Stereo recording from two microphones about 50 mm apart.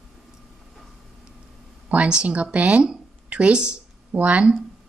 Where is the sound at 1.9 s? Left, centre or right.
Right.